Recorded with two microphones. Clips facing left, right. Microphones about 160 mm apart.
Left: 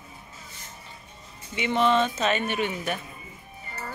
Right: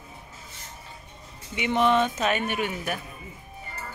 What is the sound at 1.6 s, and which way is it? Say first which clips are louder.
Speech: even; 15° right (ahead or behind).